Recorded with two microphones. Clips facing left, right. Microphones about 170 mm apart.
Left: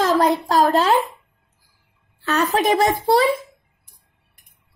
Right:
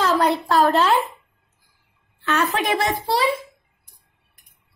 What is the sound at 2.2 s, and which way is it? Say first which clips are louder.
A child's voice: left 3 dB; 40° left (ahead or behind).